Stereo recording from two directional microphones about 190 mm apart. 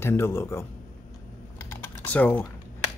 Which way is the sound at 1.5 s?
10° left (ahead or behind).